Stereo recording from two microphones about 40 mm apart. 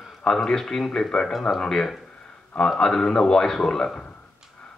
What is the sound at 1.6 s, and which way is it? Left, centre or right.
A man's voice, centre.